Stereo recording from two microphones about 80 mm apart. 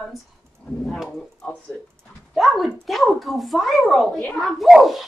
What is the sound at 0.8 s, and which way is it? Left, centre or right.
A child's voice, centre.